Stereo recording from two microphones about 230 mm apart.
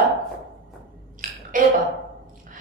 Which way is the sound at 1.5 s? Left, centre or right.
Right.